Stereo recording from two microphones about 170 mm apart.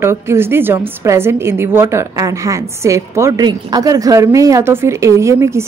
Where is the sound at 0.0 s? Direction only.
15° right (ahead or behind).